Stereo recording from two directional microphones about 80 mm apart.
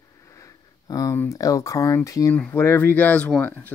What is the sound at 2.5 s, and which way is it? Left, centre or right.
Speech, left.